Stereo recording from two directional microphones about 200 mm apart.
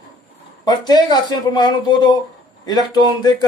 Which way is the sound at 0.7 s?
20° left (ahead or behind).